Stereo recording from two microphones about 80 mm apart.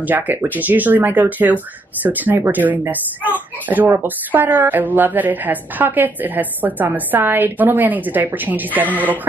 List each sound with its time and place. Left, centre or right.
0.0 s a woman's voice: right